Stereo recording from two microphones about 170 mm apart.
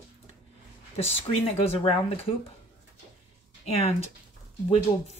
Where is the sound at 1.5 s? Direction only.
35° left (ahead or behind).